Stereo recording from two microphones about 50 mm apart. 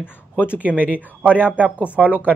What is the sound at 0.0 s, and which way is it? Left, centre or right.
Speech, left.